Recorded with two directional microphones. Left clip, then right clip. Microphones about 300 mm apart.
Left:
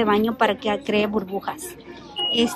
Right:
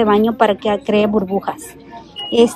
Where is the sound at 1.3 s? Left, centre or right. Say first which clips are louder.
Right 7 dB; centre.